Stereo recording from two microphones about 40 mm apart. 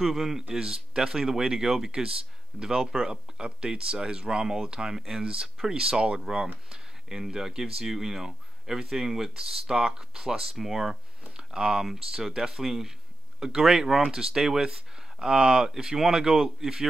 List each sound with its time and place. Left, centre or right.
0.0 s a man's voice: centre
0.5 s speech: centre
5.2 s speech: right
11.5 s speech: centre
11.8 s speech: centre